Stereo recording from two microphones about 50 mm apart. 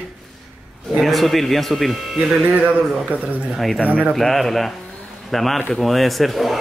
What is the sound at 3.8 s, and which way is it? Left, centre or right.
Speech, right.